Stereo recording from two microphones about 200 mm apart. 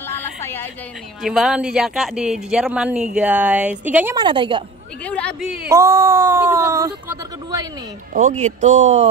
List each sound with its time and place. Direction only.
0.4 s a sound: 10° left (ahead or behind)
1.2 s speech: centre (ahead or behind)
4.2 s a woman's voice: 25° right (ahead or behind)
5.0 s speech: 5° left (ahead or behind)
5.6 s speech: 15° right (ahead or behind)
8.1 s speech: 40° right (ahead or behind)